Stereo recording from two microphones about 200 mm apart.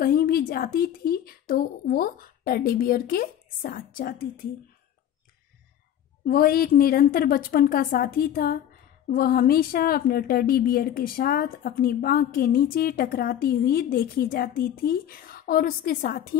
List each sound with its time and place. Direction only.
0.0 s a woman's voice: 50° left (ahead or behind)
6.2 s a woman's voice: 50° left (ahead or behind)